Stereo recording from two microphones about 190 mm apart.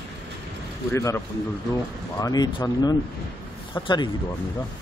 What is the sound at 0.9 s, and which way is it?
Speech, 15° left (ahead or behind).